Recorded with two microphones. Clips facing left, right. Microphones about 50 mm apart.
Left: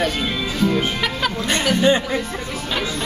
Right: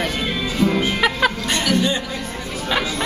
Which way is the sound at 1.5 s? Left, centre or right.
Left.